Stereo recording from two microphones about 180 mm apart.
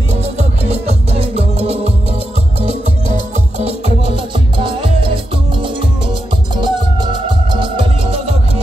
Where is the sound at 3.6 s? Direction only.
30° right (ahead or behind).